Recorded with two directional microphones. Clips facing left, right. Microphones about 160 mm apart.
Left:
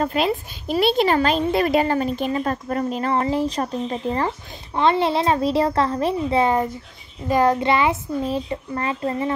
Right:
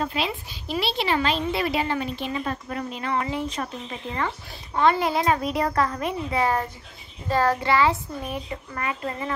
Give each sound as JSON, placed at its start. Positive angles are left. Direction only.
{"t": 0.0, "sound": "a woman's voice", "side_deg": 50}
{"t": 4.7, "sound": "speech", "side_deg": 25}